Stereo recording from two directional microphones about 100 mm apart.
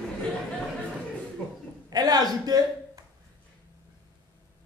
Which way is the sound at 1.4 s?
20° left (ahead or behind).